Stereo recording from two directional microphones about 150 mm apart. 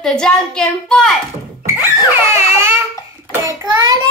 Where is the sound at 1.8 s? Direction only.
15° right (ahead or behind).